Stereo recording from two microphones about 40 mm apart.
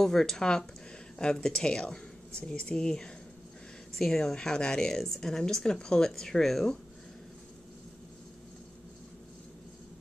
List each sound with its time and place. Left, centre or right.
0.0 s a woman's voice: centre